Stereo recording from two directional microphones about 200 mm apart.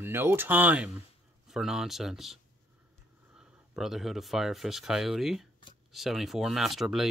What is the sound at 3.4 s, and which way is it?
Speech, centre (ahead or behind).